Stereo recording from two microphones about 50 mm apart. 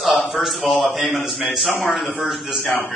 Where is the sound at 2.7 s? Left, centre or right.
Left.